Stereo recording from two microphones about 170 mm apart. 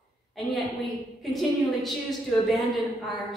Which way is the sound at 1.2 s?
Centre (ahead or behind).